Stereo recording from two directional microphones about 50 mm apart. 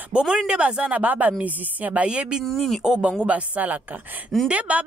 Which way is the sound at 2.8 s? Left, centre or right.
Centre.